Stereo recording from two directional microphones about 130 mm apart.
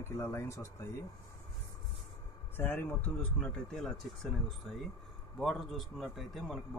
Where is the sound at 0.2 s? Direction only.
20° left (ahead or behind).